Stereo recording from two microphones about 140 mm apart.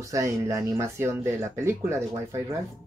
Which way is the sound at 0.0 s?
20° right (ahead or behind).